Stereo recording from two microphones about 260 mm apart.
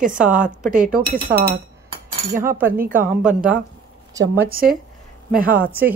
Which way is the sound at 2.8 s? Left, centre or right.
Right.